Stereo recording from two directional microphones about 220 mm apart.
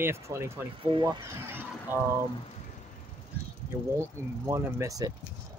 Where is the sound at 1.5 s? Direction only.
10° right (ahead or behind).